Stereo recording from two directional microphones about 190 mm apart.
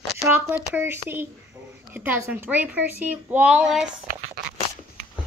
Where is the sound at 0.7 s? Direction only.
10° right (ahead or behind).